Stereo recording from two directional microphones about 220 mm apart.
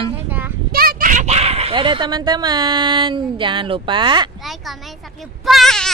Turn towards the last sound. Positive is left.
turn(degrees=0)  # may be behind; listen again after turning